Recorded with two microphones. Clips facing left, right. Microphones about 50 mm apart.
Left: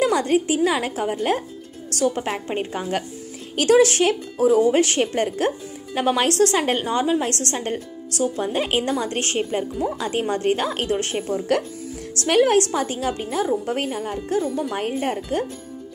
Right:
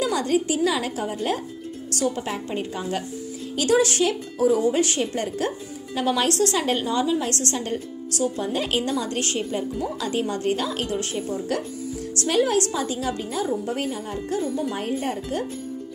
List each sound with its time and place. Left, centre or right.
0.0 s a woman's voice: left
3.5 s speech: left
5.9 s a woman's voice: left
8.5 s a woman's voice: left